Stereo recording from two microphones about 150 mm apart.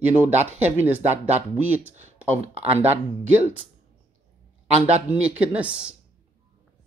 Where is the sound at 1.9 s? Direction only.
45° right (ahead or behind).